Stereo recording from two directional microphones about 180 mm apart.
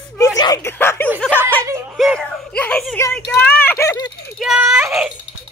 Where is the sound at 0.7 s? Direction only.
10° left (ahead or behind).